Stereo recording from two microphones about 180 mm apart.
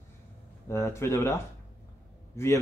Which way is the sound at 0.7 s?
15° left (ahead or behind).